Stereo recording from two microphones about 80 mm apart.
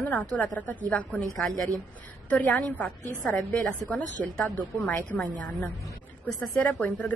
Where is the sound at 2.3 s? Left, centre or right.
Centre.